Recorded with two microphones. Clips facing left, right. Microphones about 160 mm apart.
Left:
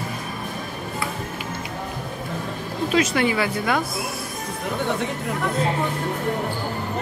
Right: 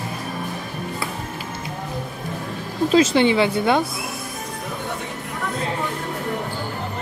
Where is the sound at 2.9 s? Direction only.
30° right (ahead or behind).